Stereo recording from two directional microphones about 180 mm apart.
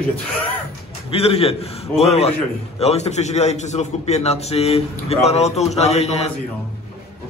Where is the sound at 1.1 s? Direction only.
35° left (ahead or behind).